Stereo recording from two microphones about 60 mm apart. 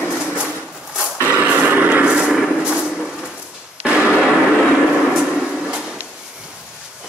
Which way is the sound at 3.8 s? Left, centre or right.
Centre.